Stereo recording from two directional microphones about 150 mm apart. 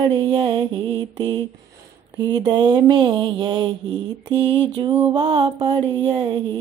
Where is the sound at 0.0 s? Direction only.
30° right (ahead or behind).